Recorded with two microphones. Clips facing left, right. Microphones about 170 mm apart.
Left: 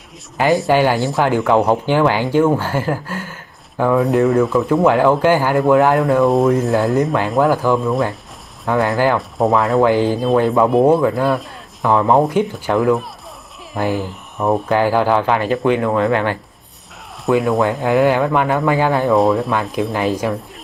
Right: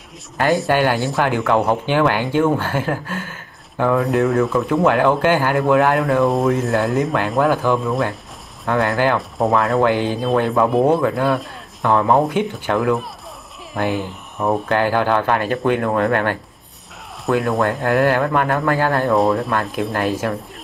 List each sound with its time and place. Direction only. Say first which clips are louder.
0.5 s speech: left 3 dB; centre (ahead or behind)
1.6 s speech: left 2 dB; 15° left (ahead or behind)
11.9 s speech: left 2 dB; 10° left (ahead or behind)
16.1 s speech: left 1 dB; 55° right (ahead or behind)
17.3 s speech: left 3 dB; centre (ahead or behind)